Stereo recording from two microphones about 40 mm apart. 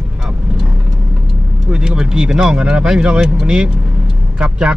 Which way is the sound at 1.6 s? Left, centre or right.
Centre.